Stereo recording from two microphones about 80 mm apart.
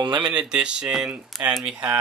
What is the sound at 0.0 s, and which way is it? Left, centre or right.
Speech, right.